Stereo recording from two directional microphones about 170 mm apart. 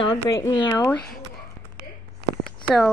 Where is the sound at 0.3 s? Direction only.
20° left (ahead or behind).